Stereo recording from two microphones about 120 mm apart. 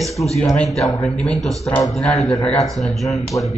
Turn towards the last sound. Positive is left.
turn(degrees=25)  # may be behind; listen again after turning